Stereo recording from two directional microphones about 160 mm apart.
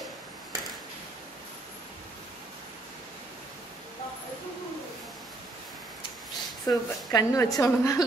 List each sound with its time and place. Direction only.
6.6 s a woman's voice: 25° left (ahead or behind)